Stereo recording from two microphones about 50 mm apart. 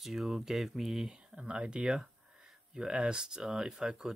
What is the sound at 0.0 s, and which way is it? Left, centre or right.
Speech, centre.